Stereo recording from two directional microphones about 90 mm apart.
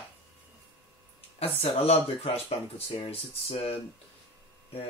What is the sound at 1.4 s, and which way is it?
Speech, 90° left.